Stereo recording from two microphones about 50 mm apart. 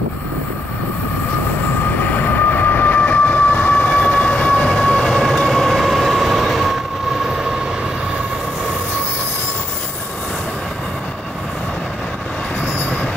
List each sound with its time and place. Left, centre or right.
2.0 s train: left
4.6 s train: centre